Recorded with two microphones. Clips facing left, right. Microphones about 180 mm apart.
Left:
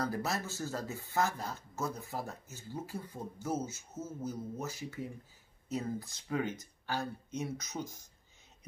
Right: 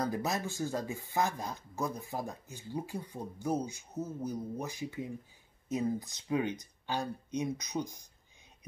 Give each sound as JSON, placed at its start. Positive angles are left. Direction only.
{"t": 0.0, "sound": "speech", "side_deg": -15}